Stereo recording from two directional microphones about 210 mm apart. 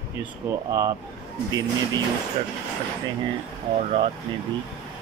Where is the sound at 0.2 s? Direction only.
15° right (ahead or behind).